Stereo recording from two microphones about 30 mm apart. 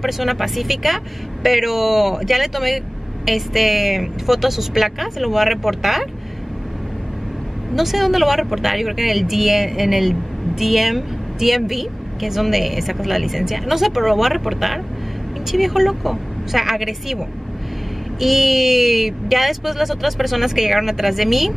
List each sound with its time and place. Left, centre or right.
0.0 s speech: centre
7.7 s a woman's voice: centre
18.2 s speech: centre